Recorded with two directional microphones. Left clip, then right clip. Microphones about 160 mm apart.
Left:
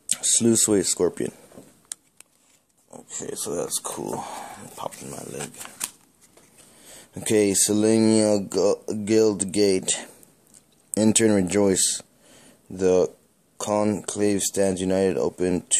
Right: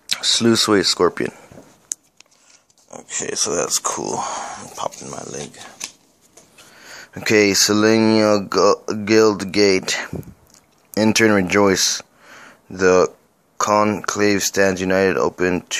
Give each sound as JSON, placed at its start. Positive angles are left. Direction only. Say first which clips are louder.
{"t": 0.1, "sound": "speech", "louder": "right 6 dB", "side_deg": 20}
{"t": 3.1, "sound": "speech", "louder": "right 9 dB", "side_deg": 0}
{"t": 6.8, "sound": "speech", "louder": "right 9 dB", "side_deg": 20}